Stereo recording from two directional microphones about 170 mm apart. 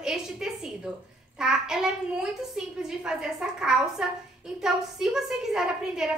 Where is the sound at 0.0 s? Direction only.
5° right (ahead or behind).